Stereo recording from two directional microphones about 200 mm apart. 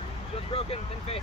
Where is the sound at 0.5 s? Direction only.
30° left (ahead or behind).